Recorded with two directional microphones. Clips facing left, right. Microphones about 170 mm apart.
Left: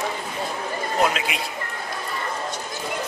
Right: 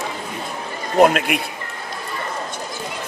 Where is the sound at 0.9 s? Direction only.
55° right (ahead or behind).